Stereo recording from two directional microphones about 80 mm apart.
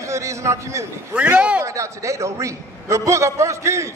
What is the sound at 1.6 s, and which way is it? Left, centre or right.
A man's voice, right.